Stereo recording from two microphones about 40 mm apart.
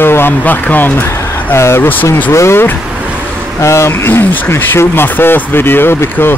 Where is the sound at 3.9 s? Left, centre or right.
Left.